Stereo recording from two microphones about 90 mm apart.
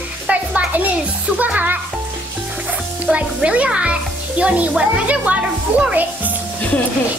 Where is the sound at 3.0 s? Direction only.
15° right (ahead or behind).